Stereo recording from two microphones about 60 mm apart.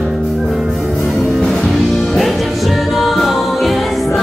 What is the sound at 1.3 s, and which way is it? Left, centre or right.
Music, centre.